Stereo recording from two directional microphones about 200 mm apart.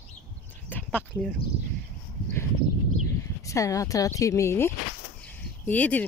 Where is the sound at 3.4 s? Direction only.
15° left (ahead or behind).